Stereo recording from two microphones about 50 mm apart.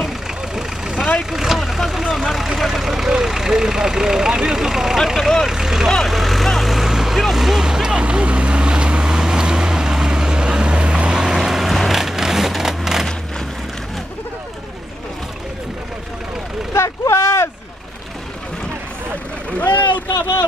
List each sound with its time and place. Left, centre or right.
0.6 s vehicle: centre
1.3 s speech: centre
5.9 s vehicle: centre
16.7 s a sound: left